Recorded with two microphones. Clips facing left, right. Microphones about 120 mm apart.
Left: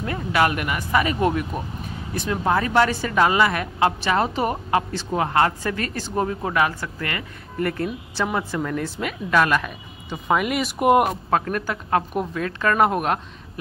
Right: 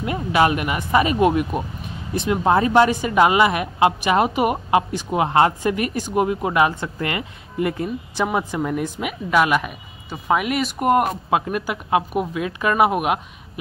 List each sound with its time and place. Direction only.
0.0 s speech: 20° right (ahead or behind); by 11.1 s 5° left (ahead or behind)
11.2 s speech: 10° right (ahead or behind)